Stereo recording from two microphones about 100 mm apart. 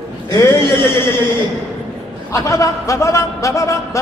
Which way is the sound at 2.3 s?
35° left (ahead or behind).